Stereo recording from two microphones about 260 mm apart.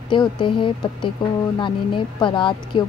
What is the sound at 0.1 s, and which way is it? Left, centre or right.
Speech, centre.